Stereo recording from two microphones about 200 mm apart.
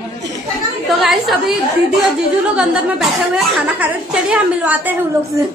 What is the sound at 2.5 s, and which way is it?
A woman's voice, 5° right (ahead or behind).